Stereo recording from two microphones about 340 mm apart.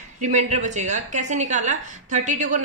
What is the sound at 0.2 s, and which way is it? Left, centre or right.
A woman's voice, right.